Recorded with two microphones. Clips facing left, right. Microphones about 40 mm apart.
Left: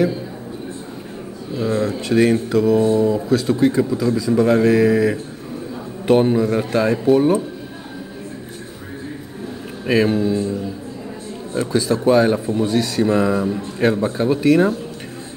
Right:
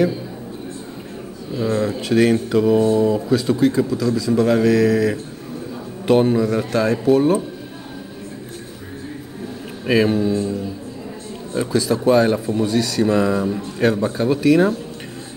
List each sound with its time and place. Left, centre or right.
1.5 s speech: centre
2.5 s mantra: centre
2.8 s a man's voice: centre
3.3 s speech: centre
3.5 s a man's voice: centre
6.7 s speech: left
7.1 s a man's voice: centre
9.8 s speech: centre
11.7 s a man's voice: centre
12.6 s speech: left
13.0 s a man's voice: centre